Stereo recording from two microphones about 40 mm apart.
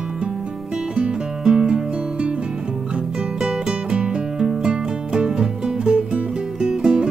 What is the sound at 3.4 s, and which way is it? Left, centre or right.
Music, right.